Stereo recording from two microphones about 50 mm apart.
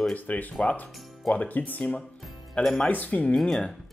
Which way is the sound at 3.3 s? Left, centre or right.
Centre.